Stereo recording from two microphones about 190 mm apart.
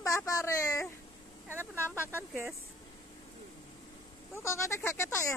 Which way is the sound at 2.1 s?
10° right (ahead or behind).